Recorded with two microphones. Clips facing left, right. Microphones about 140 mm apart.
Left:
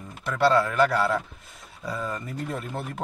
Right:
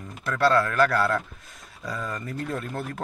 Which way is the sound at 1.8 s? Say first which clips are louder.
Left 1 dB; 25° left (ahead or behind).